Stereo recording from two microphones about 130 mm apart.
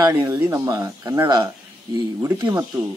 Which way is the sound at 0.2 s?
20° right (ahead or behind).